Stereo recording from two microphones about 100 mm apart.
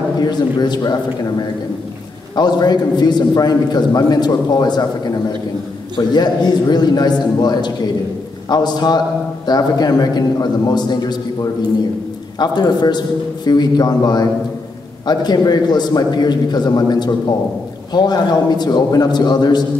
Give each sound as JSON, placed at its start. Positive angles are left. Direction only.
{"t": 0.2, "sound": "a man's voice", "side_deg": 45}
{"t": 2.3, "sound": "a man's voice", "side_deg": 45}
{"t": 12.4, "sound": "a man's voice", "side_deg": 45}